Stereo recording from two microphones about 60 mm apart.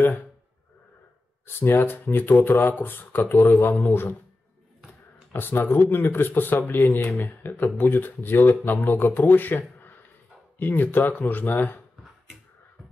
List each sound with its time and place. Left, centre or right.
0.0 s speech: left
1.4 s speech: left
5.3 s speech: left